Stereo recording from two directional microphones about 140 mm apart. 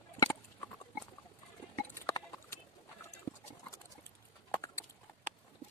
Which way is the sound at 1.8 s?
25° left (ahead or behind).